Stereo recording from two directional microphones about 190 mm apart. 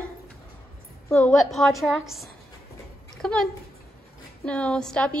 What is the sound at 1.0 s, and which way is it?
A woman's voice, 5° left (ahead or behind).